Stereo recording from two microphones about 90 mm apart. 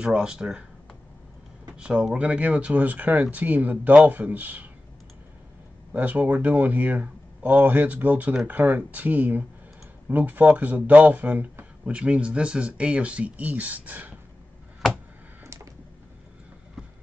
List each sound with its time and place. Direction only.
0.0 s speech: 10° right (ahead or behind)
1.8 s speech: 10° right (ahead or behind)
5.9 s speech: 15° right (ahead or behind)
15.4 s a sound: 35° right (ahead or behind)